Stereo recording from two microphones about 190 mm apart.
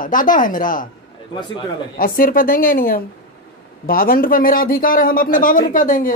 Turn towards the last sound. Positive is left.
turn(degrees=45)  # may be behind; listen again after turning